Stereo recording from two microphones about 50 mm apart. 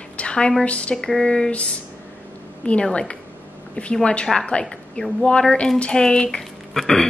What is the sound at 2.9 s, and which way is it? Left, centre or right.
A woman's voice, left.